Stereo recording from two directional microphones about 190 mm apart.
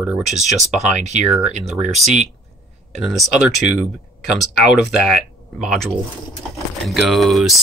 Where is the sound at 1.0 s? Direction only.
35° right (ahead or behind).